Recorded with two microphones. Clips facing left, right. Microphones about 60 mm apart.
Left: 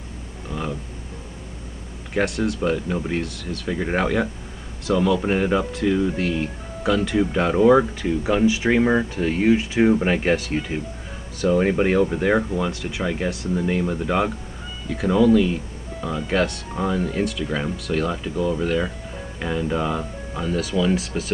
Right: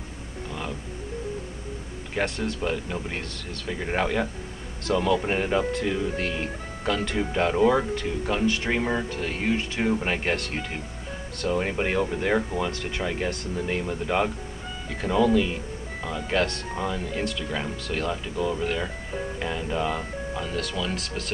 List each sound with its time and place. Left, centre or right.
2.1 s speech: centre
4.8 s speech: centre
10.0 s speech: centre
16.3 s speech: centre